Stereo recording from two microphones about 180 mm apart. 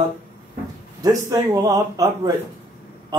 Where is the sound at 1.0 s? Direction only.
20° right (ahead or behind).